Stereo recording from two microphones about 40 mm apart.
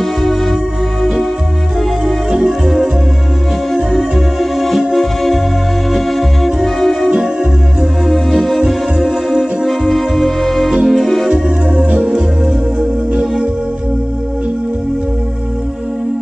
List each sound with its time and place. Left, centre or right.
2.6 s music: centre
5.9 s organ: centre
8.1 s music: centre
11.2 s music: centre